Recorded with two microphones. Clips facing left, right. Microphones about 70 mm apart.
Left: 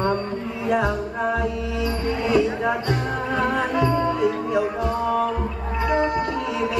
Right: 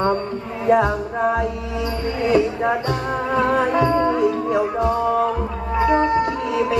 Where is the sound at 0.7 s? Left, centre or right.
Right.